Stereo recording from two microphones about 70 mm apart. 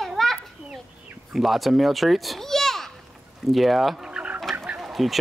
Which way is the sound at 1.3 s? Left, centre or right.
Centre.